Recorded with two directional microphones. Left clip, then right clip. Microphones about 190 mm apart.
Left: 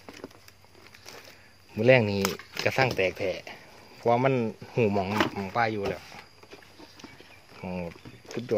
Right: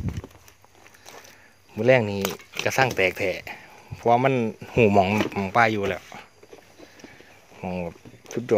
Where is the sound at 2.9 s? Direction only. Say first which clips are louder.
Right 4 dB; 25° right (ahead or behind).